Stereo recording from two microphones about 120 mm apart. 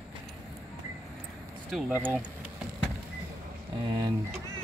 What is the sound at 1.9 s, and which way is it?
Speech, 15° right (ahead or behind).